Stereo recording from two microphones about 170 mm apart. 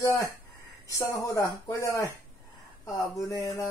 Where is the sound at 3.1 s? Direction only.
20° left (ahead or behind).